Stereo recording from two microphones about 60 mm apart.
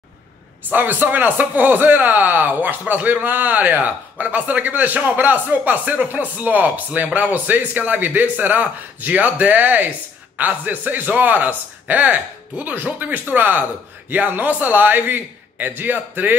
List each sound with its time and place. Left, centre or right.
0.7 s a man's voice: right